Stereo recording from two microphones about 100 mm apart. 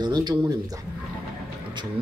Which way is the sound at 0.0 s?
45° right (ahead or behind).